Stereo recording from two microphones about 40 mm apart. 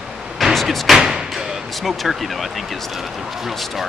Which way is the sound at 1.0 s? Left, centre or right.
Centre.